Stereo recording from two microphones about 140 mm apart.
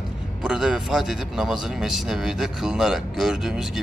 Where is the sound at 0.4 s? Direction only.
5° right (ahead or behind).